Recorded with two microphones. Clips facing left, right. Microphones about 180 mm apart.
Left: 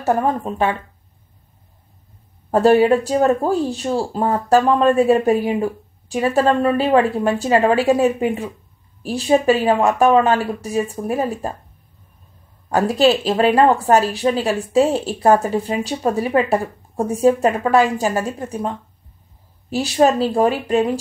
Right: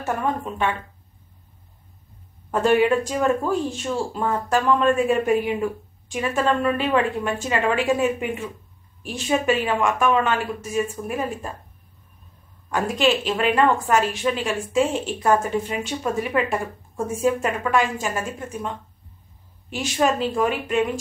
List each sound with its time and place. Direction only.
0.0 s speech: 35° left (ahead or behind)
2.5 s speech: 35° left (ahead or behind)
12.6 s speech: 40° left (ahead or behind)